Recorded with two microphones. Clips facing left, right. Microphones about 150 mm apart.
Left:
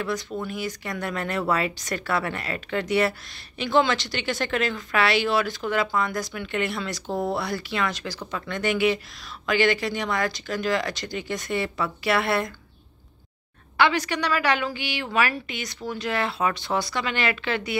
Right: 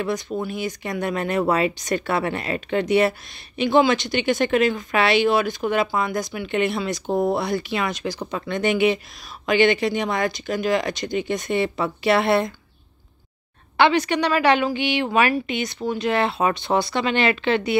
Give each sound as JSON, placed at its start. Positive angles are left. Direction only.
{"t": 0.5, "sound": "speech", "side_deg": -20}
{"t": 13.7, "sound": "speech", "side_deg": -25}